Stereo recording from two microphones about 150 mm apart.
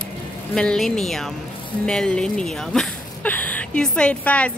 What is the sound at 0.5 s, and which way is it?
A woman's voice, 5° left (ahead or behind).